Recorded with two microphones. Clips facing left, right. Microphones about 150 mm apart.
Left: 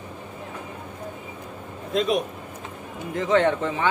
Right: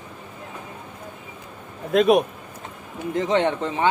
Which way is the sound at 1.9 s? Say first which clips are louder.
Right 6 dB; 60° right (ahead or behind).